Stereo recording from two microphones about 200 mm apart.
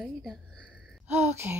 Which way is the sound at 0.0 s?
Centre (ahead or behind).